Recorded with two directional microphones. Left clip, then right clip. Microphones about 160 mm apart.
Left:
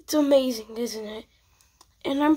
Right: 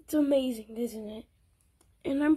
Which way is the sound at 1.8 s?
10° right (ahead or behind).